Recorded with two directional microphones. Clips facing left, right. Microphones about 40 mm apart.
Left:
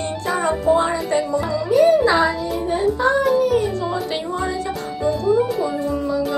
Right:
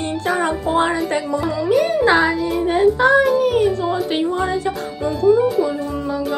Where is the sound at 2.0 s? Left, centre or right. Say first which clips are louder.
Right 2 dB; right.